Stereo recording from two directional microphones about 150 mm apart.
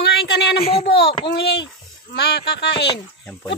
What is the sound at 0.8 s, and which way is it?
Speech, 90° left.